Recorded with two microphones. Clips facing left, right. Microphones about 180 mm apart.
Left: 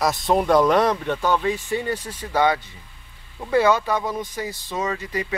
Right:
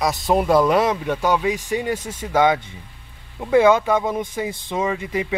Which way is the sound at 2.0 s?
45° right (ahead or behind).